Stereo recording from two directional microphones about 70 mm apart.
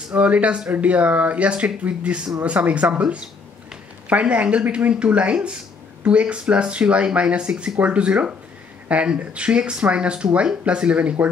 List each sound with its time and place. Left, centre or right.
0.1 s speech: centre